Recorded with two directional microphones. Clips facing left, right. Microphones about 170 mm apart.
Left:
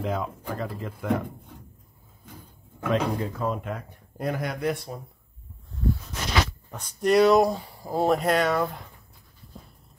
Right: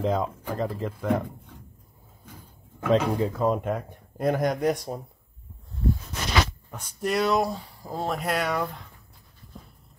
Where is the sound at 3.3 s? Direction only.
45° right (ahead or behind).